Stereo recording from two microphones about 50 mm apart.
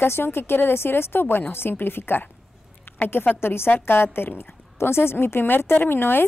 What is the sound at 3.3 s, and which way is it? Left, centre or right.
A woman's voice, left.